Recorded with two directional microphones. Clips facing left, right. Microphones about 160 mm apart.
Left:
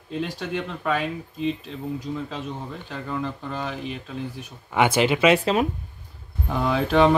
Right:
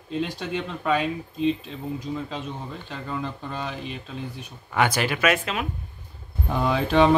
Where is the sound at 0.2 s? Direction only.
5° left (ahead or behind).